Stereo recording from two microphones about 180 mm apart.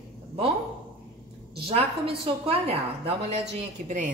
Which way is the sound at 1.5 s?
30° right (ahead or behind).